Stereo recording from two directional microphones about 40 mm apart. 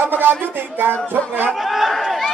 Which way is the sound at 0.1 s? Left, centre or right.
Right.